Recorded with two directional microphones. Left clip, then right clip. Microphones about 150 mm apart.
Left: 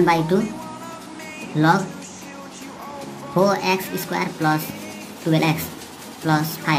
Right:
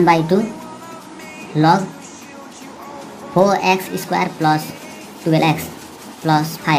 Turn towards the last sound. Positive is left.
turn(degrees=-10)  # may be behind; listen again after turning